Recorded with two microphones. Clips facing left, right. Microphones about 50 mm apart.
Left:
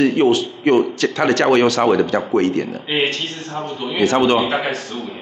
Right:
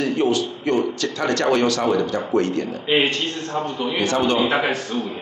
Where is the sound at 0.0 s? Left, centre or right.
Left.